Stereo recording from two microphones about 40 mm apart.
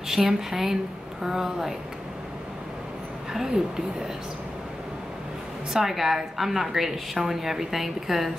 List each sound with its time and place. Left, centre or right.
0.1 s a woman's voice: centre
3.3 s a woman's voice: centre
5.7 s a woman's voice: centre